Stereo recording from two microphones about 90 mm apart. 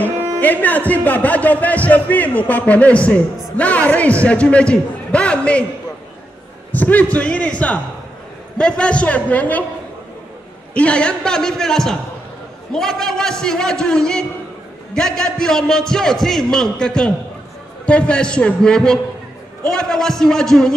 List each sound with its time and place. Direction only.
0.4 s speech: 20° left (ahead or behind)
6.7 s speech: 20° left (ahead or behind)
10.7 s a man's voice: 10° left (ahead or behind)